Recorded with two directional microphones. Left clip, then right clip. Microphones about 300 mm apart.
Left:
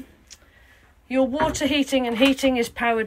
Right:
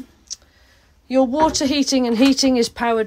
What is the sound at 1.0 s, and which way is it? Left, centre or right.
Speech, centre.